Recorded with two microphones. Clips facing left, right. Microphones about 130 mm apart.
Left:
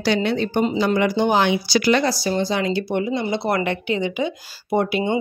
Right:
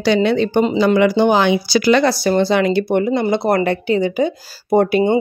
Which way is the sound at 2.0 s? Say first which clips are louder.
Right 6 dB; 70° right (ahead or behind).